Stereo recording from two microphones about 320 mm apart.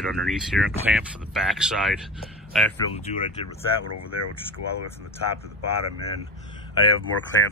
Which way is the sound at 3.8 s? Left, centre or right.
Left.